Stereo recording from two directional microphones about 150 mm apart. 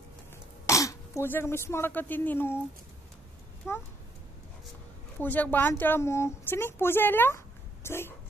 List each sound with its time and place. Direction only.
0.7 s speech: 20° left (ahead or behind)
3.6 s speech: 20° left (ahead or behind)
5.2 s speech: 10° left (ahead or behind)